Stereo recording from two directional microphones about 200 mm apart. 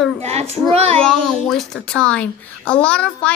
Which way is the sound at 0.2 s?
30° right (ahead or behind).